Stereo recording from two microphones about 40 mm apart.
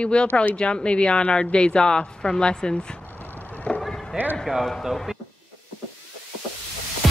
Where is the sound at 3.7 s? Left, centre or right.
Left.